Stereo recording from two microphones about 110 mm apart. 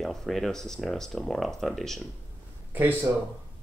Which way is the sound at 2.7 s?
20° right (ahead or behind).